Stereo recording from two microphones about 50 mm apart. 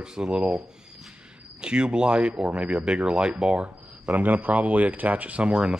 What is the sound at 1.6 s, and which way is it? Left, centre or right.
Speech, centre.